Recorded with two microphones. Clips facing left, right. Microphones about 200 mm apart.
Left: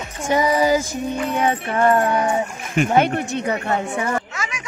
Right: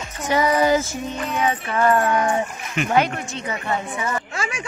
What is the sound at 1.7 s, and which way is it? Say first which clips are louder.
Music: left 1 dB; 25° left (ahead or behind).